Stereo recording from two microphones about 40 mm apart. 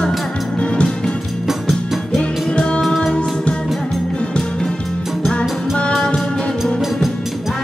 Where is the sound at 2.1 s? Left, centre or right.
Left.